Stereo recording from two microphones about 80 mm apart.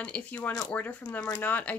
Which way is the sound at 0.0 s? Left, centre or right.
Centre.